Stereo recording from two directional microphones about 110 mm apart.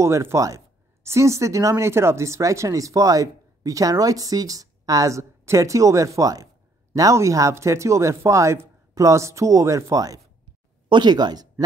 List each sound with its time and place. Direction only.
0.0 s speech: 25° right (ahead or behind); by 11.4 s 40° right (ahead or behind)